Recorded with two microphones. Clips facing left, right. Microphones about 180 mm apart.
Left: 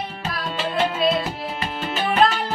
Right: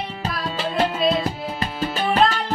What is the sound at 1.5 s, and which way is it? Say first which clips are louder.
Music: right 1 dB; 35° right (ahead or behind).